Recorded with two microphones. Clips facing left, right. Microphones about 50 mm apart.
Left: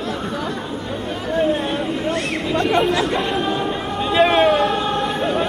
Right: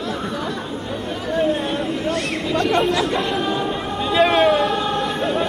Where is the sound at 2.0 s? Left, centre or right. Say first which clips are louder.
Left 1 dB; centre.